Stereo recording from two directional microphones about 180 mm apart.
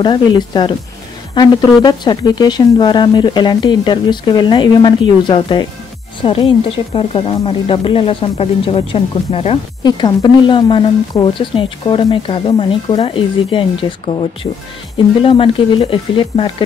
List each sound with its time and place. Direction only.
0.0 s a woman's voice: 25° left (ahead or behind)
9.8 s a woman's voice: 25° left (ahead or behind)